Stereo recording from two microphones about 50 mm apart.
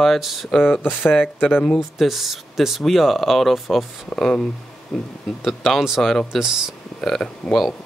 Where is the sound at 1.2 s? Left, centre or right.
Left.